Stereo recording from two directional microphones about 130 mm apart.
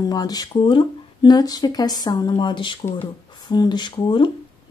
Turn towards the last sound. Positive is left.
turn(degrees=40)  # may be behind; listen again after turning